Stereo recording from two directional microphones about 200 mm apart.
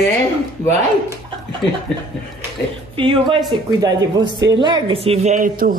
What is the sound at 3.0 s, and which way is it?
Speech, 25° right (ahead or behind).